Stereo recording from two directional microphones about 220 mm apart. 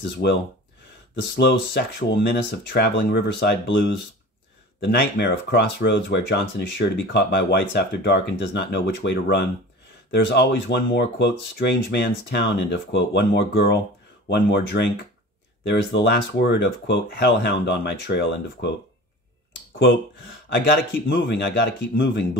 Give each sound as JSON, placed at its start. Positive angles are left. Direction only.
{"t": 0.2, "sound": "speech", "side_deg": 45}
{"t": 20.4, "sound": "speech", "side_deg": 50}